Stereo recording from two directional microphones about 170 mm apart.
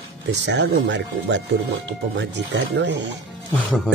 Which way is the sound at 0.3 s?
90° right.